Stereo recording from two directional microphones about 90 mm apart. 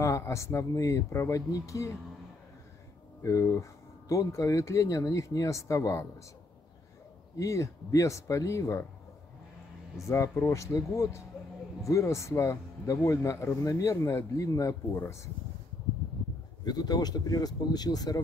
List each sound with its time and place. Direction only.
0.0 s a man's voice: 35° left (ahead or behind)
3.2 s a man's voice: 35° left (ahead or behind)
7.3 s a man's voice: 35° left (ahead or behind)
10.0 s a man's voice: 30° left (ahead or behind)
16.6 s speech: 50° left (ahead or behind)